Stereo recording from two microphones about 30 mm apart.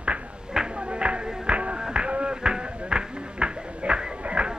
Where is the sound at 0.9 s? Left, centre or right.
Right.